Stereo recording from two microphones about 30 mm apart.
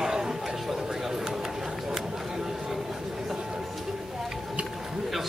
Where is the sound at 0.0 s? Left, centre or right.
Centre.